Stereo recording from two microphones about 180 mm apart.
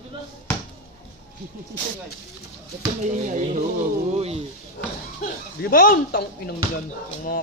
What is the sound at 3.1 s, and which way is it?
Speech, 45° right (ahead or behind).